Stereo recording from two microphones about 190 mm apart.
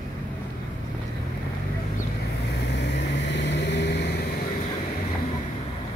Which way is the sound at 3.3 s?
65° left (ahead or behind).